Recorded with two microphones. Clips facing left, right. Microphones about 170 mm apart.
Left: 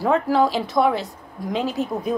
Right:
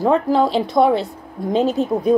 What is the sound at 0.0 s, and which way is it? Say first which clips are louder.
A woman's voice: right 3 dB; 25° right (ahead or behind).